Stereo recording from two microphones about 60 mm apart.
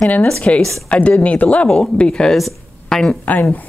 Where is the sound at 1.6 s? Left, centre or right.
Centre.